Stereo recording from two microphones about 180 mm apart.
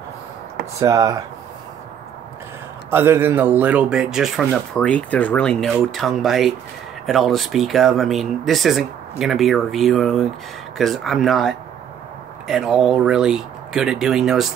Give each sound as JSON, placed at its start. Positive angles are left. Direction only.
{"t": 0.7, "sound": "speech", "side_deg": -20}
{"t": 2.9, "sound": "speech", "side_deg": -15}